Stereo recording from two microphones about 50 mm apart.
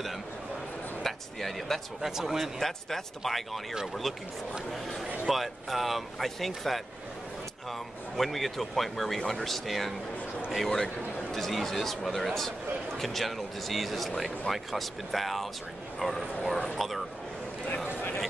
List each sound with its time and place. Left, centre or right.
1.0 s a sound: centre
2.0 s speech: centre
5.2 s speech: centre
8.2 s speech: centre
10.7 s speech: centre
17.9 s a sound: left